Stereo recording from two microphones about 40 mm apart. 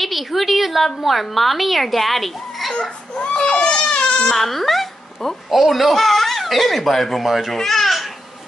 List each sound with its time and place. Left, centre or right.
0.0 s a child's voice: centre
2.7 s speech: left
3.3 s baby cry: centre
4.3 s a child's voice: centre
7.5 s babbling: centre